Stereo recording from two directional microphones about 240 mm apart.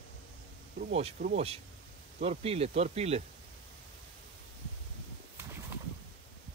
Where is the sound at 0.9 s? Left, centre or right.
Right.